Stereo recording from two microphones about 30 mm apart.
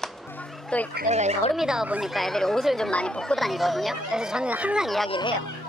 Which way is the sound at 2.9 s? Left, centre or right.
Left.